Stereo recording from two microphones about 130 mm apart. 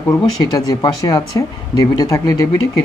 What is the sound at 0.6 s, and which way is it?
Speech, 25° left (ahead or behind).